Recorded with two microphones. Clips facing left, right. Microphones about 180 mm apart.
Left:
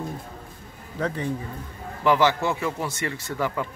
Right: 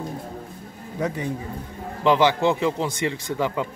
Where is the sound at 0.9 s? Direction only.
10° right (ahead or behind).